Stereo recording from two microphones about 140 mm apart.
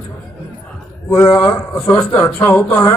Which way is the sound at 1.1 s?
15° left (ahead or behind).